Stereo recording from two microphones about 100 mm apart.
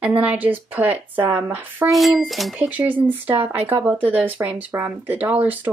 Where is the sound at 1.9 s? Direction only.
Centre (ahead or behind).